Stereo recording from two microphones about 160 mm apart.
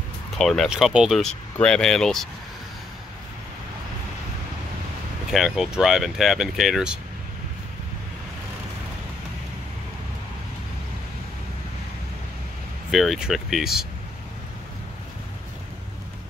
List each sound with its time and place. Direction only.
0.4 s speech: centre (ahead or behind)
5.3 s speech: centre (ahead or behind)
12.9 s speech: centre (ahead or behind)